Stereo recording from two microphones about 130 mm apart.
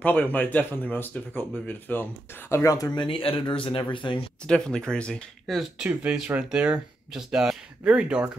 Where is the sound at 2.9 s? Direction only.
35° left (ahead or behind).